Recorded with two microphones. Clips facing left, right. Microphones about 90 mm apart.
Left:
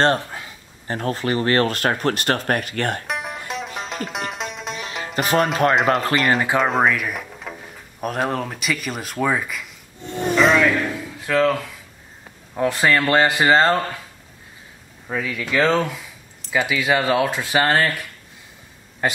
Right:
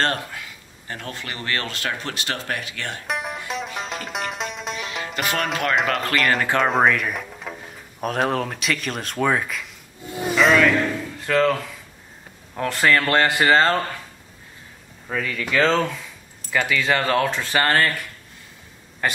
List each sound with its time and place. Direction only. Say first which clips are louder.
0.0 s speech: left 5 dB; 30° left (ahead or behind); by 3.0 s 50° left (ahead or behind)
3.1 s music: even; centre (ahead or behind)
5.0 s speech: left 6 dB; 35° left (ahead or behind)
6.2 s speech: left 1 dB; 5° left (ahead or behind)
10.3 s a sound: even; centre (ahead or behind)
12.5 s speech: left 1 dB; 10° left (ahead or behind)
15.0 s speech: left 1 dB; 10° left (ahead or behind)
19.0 s speech: left 2 dB; 15° left (ahead or behind)